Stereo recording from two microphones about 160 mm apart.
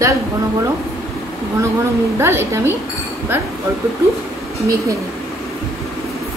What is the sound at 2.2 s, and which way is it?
Speech, 15° right (ahead or behind).